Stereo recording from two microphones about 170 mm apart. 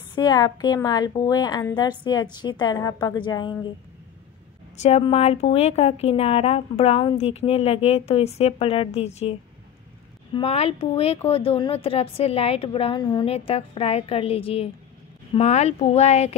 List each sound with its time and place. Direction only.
0.1 s a woman's voice: 25° left (ahead or behind)
4.8 s a woman's voice: 40° left (ahead or behind)